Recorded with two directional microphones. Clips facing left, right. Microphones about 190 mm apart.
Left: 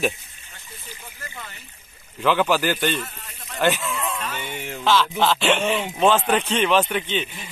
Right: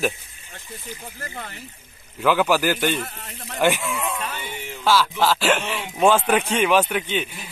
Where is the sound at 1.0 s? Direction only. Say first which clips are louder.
Right 4 dB; 35° right (ahead or behind).